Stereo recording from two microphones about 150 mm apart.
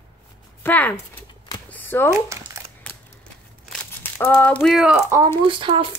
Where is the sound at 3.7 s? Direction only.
10° left (ahead or behind).